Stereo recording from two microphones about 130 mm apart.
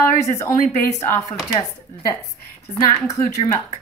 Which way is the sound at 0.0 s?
25° left (ahead or behind).